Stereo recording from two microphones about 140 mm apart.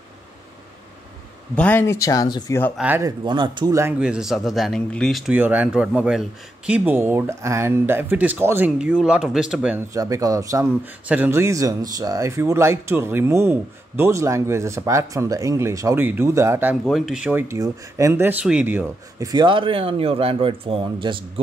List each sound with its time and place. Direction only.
1.5 s speech: 10° left (ahead or behind); by 2.5 s 30° left (ahead or behind)
3.0 s speech: 30° right (ahead or behind)
4.0 s speech: 5° right (ahead or behind)
5.3 s speech: 10° right (ahead or behind)
9.9 s speech: 25° right (ahead or behind)
16.9 s speech: 5° right (ahead or behind)
19.1 s speech: 30° right (ahead or behind)